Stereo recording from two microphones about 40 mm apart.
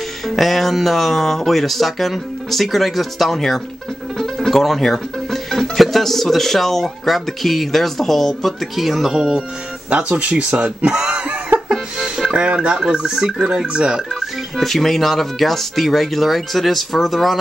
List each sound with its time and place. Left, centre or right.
0.3 s speech: centre
8.7 s speech: centre
9.8 s speech: right
11.7 s music: centre
12.4 s speech: right
14.2 s speech: centre